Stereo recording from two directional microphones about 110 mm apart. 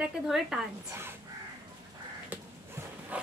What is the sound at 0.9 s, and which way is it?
Speech, 20° right (ahead or behind).